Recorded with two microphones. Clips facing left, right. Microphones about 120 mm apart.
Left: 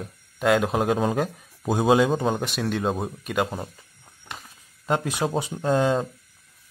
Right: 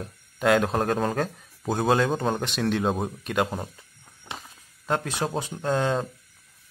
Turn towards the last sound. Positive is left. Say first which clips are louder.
# left 3 dB
turn(degrees=5)  # may be behind; listen again after turning